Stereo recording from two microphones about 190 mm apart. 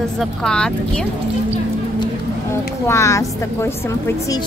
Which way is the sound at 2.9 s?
15° left (ahead or behind).